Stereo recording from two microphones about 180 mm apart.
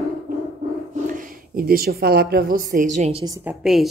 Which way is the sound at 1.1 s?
55° right (ahead or behind).